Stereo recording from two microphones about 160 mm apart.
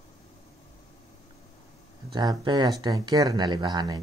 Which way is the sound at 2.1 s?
25° right (ahead or behind).